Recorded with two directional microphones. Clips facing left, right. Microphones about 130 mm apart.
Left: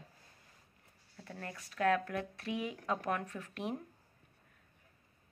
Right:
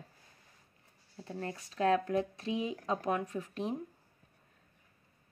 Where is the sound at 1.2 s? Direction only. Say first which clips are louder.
Right 6 dB; 25° right (ahead or behind).